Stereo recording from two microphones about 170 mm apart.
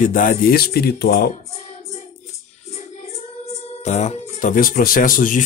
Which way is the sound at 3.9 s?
40° left (ahead or behind).